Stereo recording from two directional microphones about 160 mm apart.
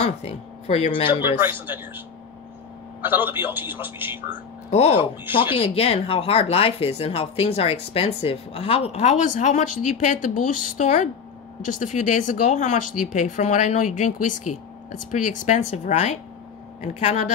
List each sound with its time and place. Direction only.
0.0 s speech: 40° left (ahead or behind)
1.2 s speech: 15° right (ahead or behind)
4.6 s speech: 40° left (ahead or behind)